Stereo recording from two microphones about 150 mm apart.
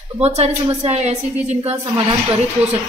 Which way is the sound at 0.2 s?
45° right (ahead or behind).